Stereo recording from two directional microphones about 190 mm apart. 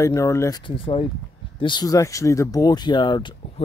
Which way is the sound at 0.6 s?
30° left (ahead or behind).